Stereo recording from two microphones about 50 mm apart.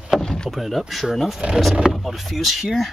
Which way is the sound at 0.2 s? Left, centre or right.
Centre.